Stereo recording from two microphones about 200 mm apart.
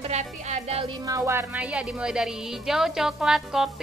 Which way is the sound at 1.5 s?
5° right (ahead or behind).